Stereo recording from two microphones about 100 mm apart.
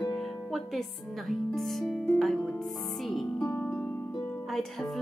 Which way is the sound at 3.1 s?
Centre (ahead or behind).